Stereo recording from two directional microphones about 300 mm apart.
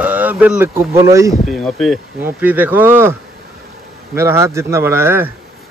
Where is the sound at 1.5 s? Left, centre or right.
Centre.